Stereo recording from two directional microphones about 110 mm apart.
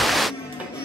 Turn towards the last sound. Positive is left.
turn(degrees=0)  # may be behind; listen again after turning